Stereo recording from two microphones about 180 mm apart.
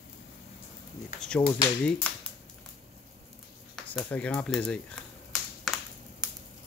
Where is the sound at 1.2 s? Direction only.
5° left (ahead or behind).